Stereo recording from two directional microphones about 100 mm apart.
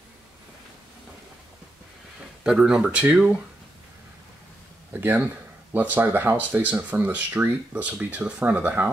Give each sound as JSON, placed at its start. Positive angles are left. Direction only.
{"t": 2.4, "sound": "speech", "side_deg": -5}
{"t": 5.0, "sound": "speech", "side_deg": -15}